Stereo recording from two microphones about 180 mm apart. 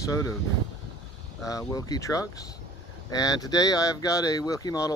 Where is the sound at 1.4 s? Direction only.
20° left (ahead or behind).